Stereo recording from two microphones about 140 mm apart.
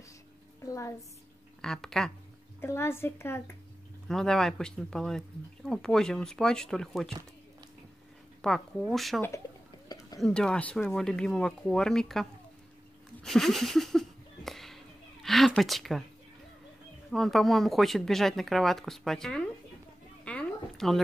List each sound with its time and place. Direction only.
0.7 s a sound: 20° left (ahead or behind)
1.6 s speech: 5° left (ahead or behind)
2.6 s a woman's voice: 15° left (ahead or behind)
4.1 s speech: 5° left (ahead or behind)
8.4 s speech: 5° left (ahead or behind)
10.2 s speech: 5° left (ahead or behind)
13.2 s a sound: centre (ahead or behind)
15.2 s speech: centre (ahead or behind)
17.1 s speech: centre (ahead or behind)
20.2 s a sound: 5° left (ahead or behind)